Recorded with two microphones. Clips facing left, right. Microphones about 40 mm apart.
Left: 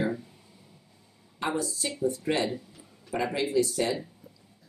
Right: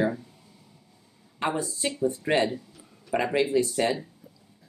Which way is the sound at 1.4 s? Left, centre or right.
Right.